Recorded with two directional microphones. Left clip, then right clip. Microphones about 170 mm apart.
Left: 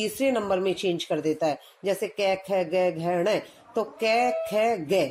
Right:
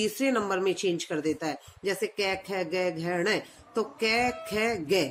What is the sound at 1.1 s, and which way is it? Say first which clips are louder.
Speech: left 5 dB; 30° right (ahead or behind).